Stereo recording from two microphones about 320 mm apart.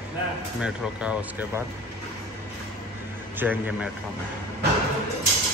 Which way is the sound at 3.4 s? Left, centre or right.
Centre.